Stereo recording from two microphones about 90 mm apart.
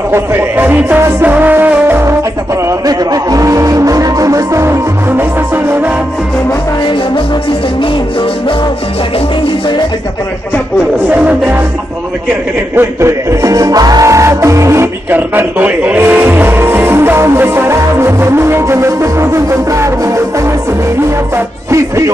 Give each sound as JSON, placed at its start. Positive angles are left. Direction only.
{"t": 0.1, "sound": "speech", "side_deg": -25}
{"t": 2.6, "sound": "speech", "side_deg": -45}
{"t": 7.8, "sound": "music", "side_deg": 70}
{"t": 11.1, "sound": "music", "side_deg": -15}
{"t": 12.7, "sound": "speech", "side_deg": -35}
{"t": 15.1, "sound": "speech", "side_deg": -20}
{"t": 21.6, "sound": "speech", "side_deg": -35}